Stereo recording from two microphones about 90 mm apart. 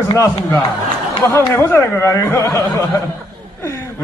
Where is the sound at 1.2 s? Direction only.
30° left (ahead or behind).